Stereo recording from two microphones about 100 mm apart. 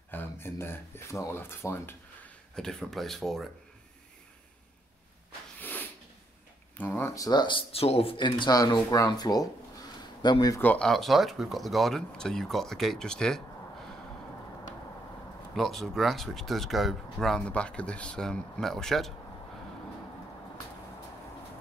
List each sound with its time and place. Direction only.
0.1 s speech: 20° left (ahead or behind)
2.5 s speech: 5° left (ahead or behind)
5.6 s snort: 20° left (ahead or behind)
6.8 s speech: 20° left (ahead or behind)
7.2 s speech: 45° left (ahead or behind)
7.7 s speech: 85° left
8.2 s speech: 45° left (ahead or behind)
10.6 s speech: 15° left (ahead or behind)
10.9 s speech: centre (ahead or behind)
15.5 s speech: 5° left (ahead or behind)